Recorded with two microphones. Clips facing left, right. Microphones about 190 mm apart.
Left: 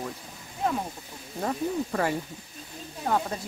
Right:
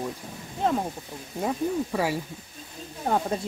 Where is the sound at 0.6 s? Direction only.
30° right (ahead or behind).